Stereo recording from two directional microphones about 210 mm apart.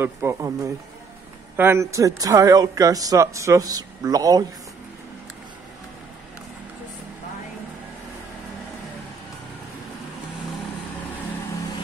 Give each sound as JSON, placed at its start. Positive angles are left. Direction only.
{"t": 0.0, "sound": "speech", "side_deg": -10}